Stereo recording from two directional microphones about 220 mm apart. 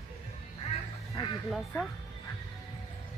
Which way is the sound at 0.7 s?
25° left (ahead or behind).